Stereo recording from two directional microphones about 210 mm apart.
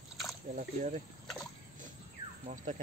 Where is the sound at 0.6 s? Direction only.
35° right (ahead or behind).